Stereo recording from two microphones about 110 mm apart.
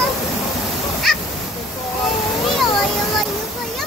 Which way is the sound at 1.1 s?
5° left (ahead or behind).